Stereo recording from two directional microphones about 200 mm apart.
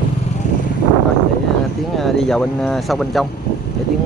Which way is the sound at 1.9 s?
Centre (ahead or behind).